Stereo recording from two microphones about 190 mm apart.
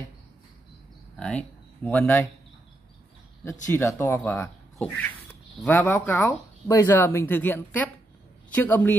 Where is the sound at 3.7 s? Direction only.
15° left (ahead or behind).